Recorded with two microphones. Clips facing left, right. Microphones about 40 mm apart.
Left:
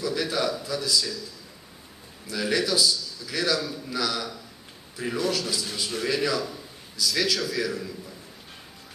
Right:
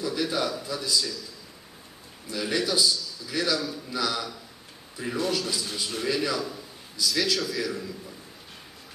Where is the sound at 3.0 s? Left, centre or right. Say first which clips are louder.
Even; centre.